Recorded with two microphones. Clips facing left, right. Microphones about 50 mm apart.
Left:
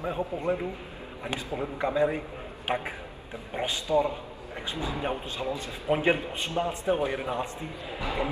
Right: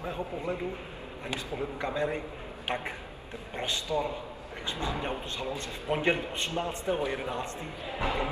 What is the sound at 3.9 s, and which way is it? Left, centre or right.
Speech, left.